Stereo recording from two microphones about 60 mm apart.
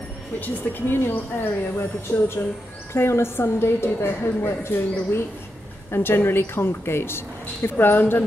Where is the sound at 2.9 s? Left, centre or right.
Left.